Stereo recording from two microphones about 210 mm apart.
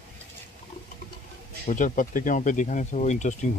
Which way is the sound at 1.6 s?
40° left (ahead or behind).